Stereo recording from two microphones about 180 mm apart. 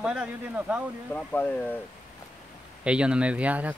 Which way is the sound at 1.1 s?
10° left (ahead or behind).